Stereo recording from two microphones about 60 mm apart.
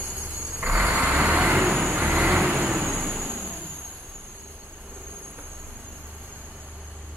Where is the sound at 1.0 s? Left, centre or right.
Centre.